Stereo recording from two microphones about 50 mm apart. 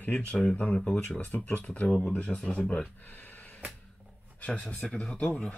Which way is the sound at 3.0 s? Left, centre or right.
Left.